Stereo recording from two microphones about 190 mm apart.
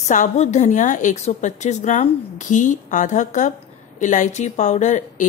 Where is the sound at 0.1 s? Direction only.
40° left (ahead or behind).